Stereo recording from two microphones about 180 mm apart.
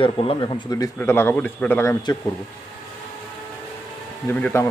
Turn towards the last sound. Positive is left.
turn(degrees=15)  # may be behind; listen again after turning